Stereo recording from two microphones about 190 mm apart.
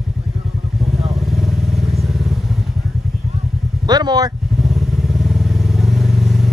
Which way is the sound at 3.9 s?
20° right (ahead or behind).